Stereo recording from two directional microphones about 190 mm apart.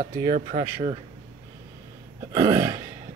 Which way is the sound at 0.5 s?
25° right (ahead or behind).